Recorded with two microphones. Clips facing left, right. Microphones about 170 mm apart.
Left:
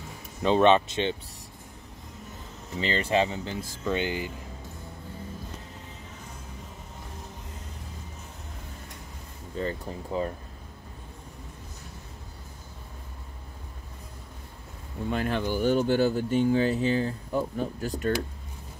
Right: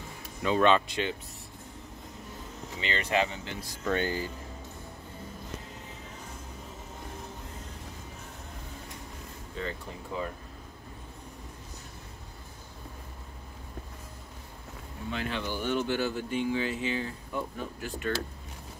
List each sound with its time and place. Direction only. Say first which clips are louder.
0.4 s speech: left 4 dB; 25° left (ahead or behind)
2.8 s speech: left 4 dB; 35° left (ahead or behind)
3.8 s speech: left 1 dB; 15° left (ahead or behind)
9.6 s speech: left 5 dB; 35° left (ahead or behind)
15.0 s speech: left 6 dB; 45° left (ahead or behind)